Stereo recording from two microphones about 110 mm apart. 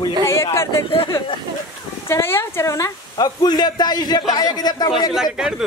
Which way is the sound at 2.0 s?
20° left (ahead or behind).